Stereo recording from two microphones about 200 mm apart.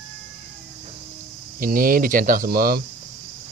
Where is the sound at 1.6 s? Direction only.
45° right (ahead or behind).